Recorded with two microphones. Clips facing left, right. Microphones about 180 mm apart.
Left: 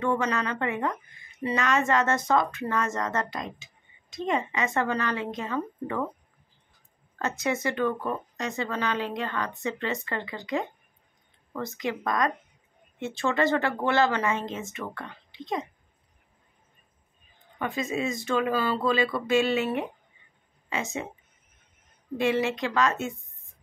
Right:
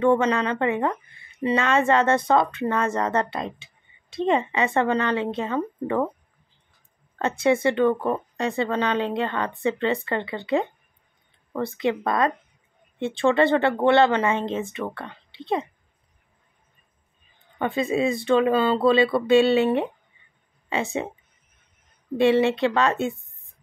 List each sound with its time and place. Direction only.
0.0 s speech: 30° right (ahead or behind)
7.2 s speech: 30° right (ahead or behind)
17.7 s speech: 30° right (ahead or behind)
22.1 s a woman's voice: 30° right (ahead or behind)